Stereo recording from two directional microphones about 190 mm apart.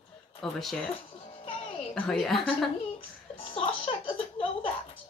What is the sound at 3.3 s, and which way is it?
Music, 30° left (ahead or behind).